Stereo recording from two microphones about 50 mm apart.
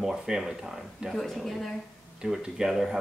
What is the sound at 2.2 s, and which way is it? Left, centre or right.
Speech, centre.